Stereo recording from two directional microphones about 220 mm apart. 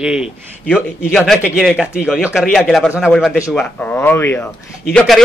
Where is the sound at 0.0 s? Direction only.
5° right (ahead or behind).